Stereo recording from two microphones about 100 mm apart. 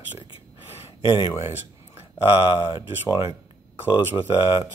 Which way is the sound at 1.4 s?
25° right (ahead or behind).